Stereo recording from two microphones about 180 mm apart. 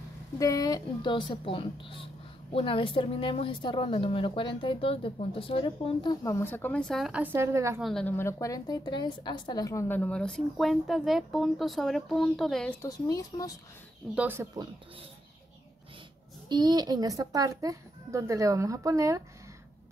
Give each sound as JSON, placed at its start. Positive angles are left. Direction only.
{"t": 0.4, "sound": "a woman's voice", "side_deg": 20}
{"t": 6.2, "sound": "a woman's voice", "side_deg": 15}
{"t": 7.8, "sound": "a woman's voice", "side_deg": 5}
{"t": 12.8, "sound": "a woman's voice", "side_deg": 20}
{"t": 14.1, "sound": "speech", "side_deg": -10}
{"t": 16.4, "sound": "speech", "side_deg": -25}